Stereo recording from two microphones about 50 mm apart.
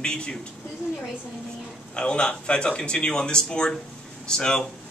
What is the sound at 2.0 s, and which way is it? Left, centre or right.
Speech, centre.